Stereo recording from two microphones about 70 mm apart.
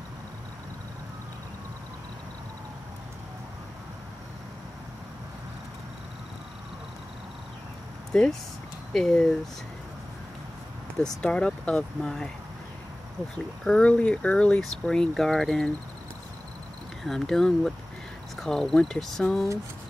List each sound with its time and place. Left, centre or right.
8.1 s speech: centre
11.0 s speech: centre
13.7 s speech: centre
17.0 s speech: centre